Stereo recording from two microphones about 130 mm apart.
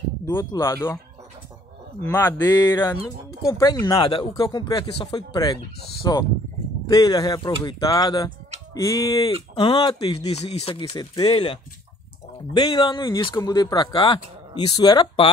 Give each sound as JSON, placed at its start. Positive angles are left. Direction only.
{"t": 0.3, "sound": "speech", "side_deg": 20}
{"t": 2.0, "sound": "speech", "side_deg": 20}
{"t": 4.4, "sound": "speech", "side_deg": 30}
{"t": 9.6, "sound": "speech", "side_deg": 40}
{"t": 10.3, "sound": "speech", "side_deg": 50}
{"t": 10.8, "sound": "speech", "side_deg": 35}